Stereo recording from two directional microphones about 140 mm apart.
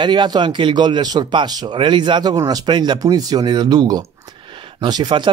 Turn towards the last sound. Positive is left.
turn(degrees=-35)  # may be behind; listen again after turning